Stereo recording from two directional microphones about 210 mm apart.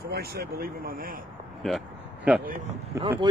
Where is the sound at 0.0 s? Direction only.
50° right (ahead or behind).